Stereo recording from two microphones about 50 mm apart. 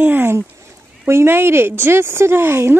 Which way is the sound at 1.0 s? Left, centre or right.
Right.